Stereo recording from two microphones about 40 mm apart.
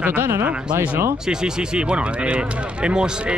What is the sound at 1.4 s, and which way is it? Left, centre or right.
Speech, right.